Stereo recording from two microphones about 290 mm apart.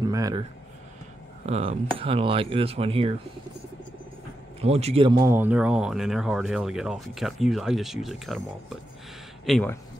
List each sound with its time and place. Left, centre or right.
0.0 s speech: centre
4.6 s speech: right; by 9.8 s centre